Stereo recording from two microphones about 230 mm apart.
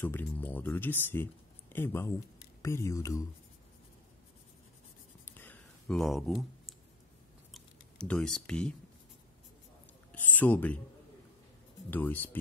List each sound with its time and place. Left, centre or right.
0.0 s speech: centre
5.2 s a sound: centre
7.5 s speech: centre
10.1 s speech: centre
11.9 s speech: centre